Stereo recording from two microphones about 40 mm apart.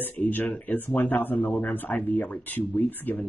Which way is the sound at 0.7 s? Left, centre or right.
Left.